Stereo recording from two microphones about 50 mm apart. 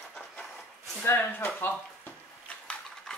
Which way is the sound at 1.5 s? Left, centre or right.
Left.